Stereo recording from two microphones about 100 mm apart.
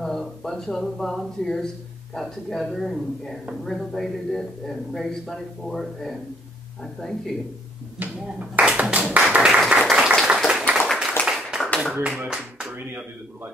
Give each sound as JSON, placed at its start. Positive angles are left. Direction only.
{"t": 0.0, "sound": "a man's voice", "side_deg": 5}
{"t": 8.0, "sound": "speech", "side_deg": -15}
{"t": 9.3, "sound": "applause", "side_deg": -10}
{"t": 10.2, "sound": "a sound", "side_deg": -5}
{"t": 11.9, "sound": "speech", "side_deg": -10}
{"t": 12.7, "sound": "speech", "side_deg": -25}